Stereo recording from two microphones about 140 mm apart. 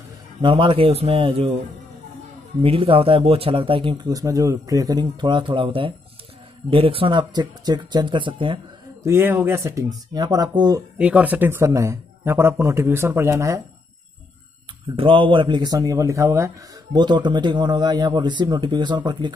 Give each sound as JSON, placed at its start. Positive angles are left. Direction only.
{"t": 0.4, "sound": "speech", "side_deg": -35}
{"t": 2.6, "sound": "a man's voice", "side_deg": -40}
{"t": 4.1, "sound": "a man's voice", "side_deg": -25}
{"t": 9.0, "sound": "speech", "side_deg": -15}
{"t": 11.0, "sound": "speech", "side_deg": -10}
{"t": 15.0, "sound": "speech", "side_deg": -40}
{"t": 17.0, "sound": "a man's voice", "side_deg": -30}